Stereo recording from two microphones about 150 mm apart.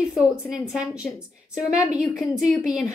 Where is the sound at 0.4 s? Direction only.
Centre (ahead or behind).